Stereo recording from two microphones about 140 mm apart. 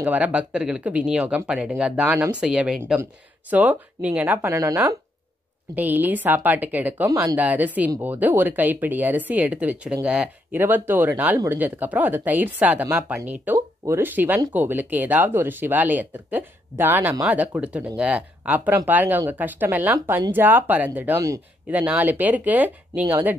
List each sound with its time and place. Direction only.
0.0 s speech: 10° right (ahead or behind)
7.1 s speech: 25° right (ahead or behind)
7.3 s speech: 10° right (ahead or behind)